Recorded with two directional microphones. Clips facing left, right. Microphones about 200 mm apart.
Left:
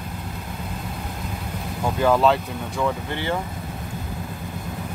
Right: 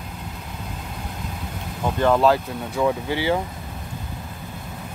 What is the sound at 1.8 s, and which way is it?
Speech, 5° left (ahead or behind).